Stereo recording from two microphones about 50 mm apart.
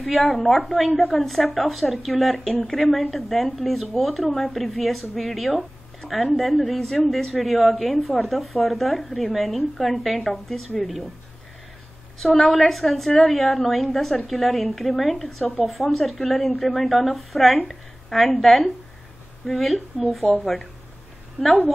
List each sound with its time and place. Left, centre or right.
0.0 s a woman's voice: centre
12.2 s a woman's voice: centre